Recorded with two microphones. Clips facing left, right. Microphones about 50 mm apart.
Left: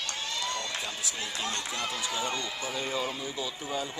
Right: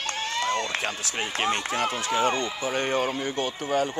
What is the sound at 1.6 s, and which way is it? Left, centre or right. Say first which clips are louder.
Speech: right 7 dB; right.